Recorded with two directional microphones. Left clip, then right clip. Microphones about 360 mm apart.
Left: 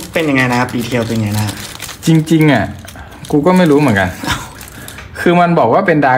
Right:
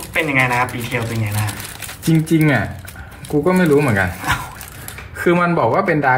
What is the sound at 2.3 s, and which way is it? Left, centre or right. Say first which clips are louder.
Speech: left 5 dB; left.